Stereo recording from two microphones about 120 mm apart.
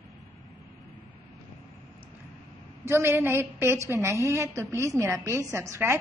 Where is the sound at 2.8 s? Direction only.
20° right (ahead or behind).